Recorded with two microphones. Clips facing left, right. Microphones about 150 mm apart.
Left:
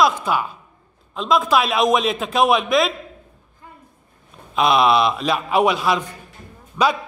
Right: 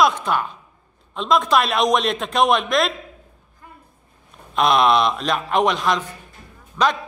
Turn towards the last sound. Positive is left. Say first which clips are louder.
# left 1 dB
turn(degrees=10)  # may be behind; listen again after turning